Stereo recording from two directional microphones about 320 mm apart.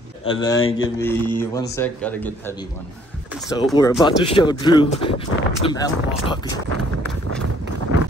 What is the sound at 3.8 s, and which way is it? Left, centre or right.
Speech, centre.